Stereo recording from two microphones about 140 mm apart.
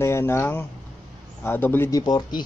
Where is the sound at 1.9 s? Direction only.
30° left (ahead or behind).